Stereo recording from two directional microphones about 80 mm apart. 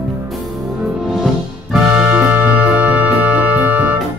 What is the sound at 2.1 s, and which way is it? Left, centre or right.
Music, centre.